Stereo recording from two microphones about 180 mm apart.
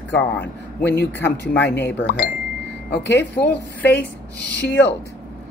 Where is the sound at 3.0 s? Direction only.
70° left (ahead or behind).